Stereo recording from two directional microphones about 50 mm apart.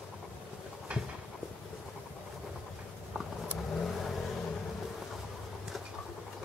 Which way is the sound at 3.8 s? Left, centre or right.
Centre.